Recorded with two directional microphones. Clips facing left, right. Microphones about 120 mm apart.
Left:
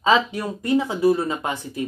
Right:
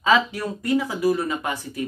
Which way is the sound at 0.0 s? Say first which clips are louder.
Left 1 dB; 25° left (ahead or behind).